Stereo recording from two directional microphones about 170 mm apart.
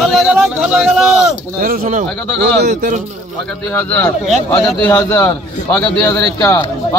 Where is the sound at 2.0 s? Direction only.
5° left (ahead or behind).